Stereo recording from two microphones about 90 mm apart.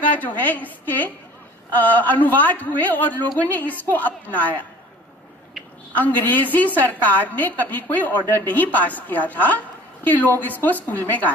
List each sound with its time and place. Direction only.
0.2 s a woman's voice: 20° left (ahead or behind)
5.9 s a woman's voice: 20° left (ahead or behind)